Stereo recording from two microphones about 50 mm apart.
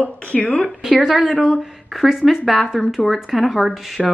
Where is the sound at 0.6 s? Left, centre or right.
Centre.